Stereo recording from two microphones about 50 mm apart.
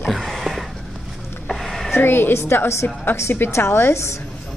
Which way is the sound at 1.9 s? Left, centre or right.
Left.